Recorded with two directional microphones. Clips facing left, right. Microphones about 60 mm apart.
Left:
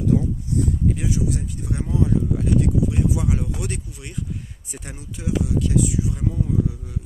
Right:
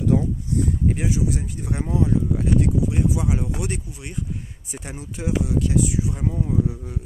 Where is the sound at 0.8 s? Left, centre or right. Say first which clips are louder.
Even; right.